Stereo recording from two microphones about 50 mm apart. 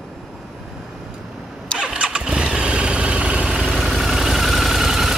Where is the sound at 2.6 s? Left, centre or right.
Right.